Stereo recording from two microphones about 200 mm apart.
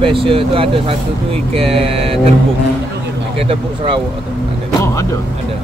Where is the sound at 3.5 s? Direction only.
25° right (ahead or behind).